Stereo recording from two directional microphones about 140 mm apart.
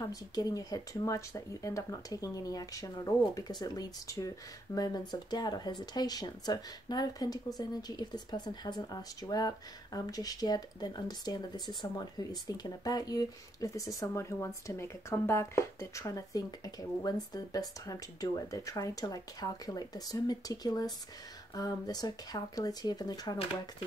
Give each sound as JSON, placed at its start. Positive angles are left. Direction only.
{"t": 0.0, "sound": "speech", "side_deg": 25}